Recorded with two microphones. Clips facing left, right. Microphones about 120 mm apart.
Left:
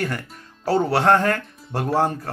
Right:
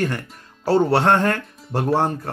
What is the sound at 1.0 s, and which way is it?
Speech, 20° right (ahead or behind).